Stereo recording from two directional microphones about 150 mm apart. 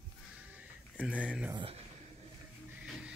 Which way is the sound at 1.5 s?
35° right (ahead or behind).